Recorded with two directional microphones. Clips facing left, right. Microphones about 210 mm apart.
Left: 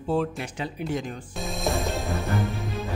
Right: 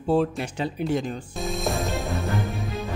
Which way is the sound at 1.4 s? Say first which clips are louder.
Even; centre (ahead or behind).